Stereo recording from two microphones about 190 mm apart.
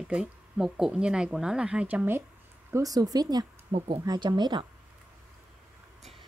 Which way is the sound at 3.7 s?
30° right (ahead or behind).